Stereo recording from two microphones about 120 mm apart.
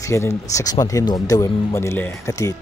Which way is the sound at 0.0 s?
25° left (ahead or behind).